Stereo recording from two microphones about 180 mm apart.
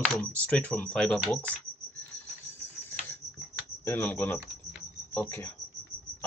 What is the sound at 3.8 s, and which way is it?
Speech, 10° left (ahead or behind).